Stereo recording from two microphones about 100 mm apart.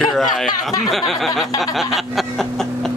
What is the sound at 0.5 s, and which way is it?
Speech, 40° left (ahead or behind).